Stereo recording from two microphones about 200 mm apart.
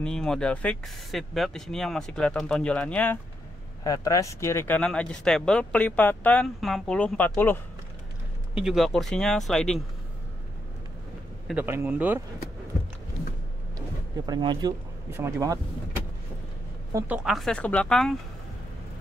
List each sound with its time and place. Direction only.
0.0 s speech: 5° left (ahead or behind)
8.6 s speech: centre (ahead or behind)
11.4 s speech: 10° right (ahead or behind)
14.1 s speech: 20° right (ahead or behind)
16.9 s speech: 5° right (ahead or behind)